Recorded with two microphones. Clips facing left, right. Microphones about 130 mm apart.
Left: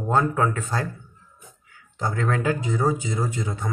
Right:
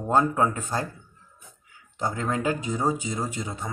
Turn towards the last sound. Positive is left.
turn(degrees=-15)  # may be behind; listen again after turning